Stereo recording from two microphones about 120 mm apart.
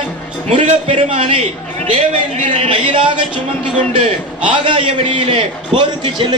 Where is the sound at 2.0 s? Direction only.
70° right (ahead or behind); by 3.2 s 45° right (ahead or behind).